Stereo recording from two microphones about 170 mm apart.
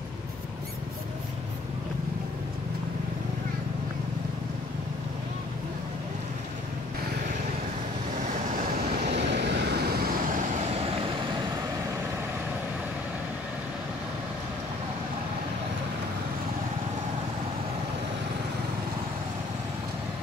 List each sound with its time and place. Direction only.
8.2 s vehicle: 45° right (ahead or behind)
9.1 s vehicle: 90° right; by 10.4 s 65° right (ahead or behind)